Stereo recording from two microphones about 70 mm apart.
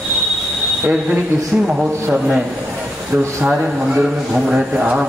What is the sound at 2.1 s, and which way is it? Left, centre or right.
Speech, centre.